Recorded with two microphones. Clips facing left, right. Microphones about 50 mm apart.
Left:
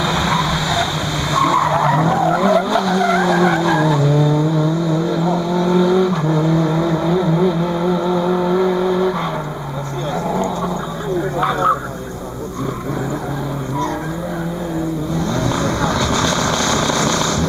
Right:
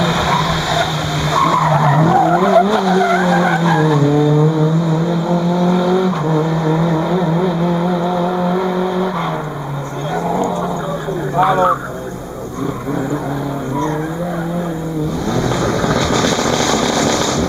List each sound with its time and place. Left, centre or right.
0.0 s vehicle: centre
5.7 s vehicle: centre
6.3 s vehicle: right
6.8 s vehicle: centre
15.6 s vehicle: left